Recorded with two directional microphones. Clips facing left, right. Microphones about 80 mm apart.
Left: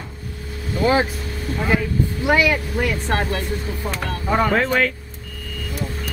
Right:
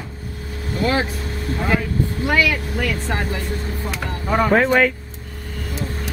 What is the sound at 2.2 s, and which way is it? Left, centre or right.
Speech, centre.